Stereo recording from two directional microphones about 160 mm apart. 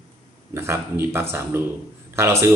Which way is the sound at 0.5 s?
15° right (ahead or behind).